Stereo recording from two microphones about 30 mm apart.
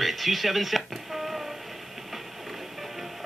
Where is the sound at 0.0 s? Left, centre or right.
Centre.